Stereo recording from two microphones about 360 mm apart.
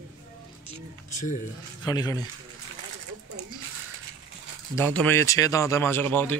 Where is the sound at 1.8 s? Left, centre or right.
Centre.